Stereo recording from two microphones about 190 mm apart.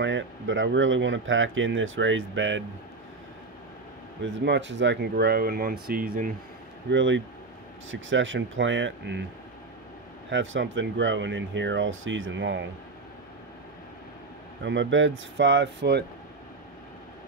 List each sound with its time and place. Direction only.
0.0 s speech: 75° right (ahead or behind)
4.2 s speech: 75° right (ahead or behind); by 6.3 s 45° right (ahead or behind)
6.9 s speech: 70° right (ahead or behind)
7.9 s speech: 85° right
10.3 s speech: 80° right
14.6 s speech: 70° right (ahead or behind)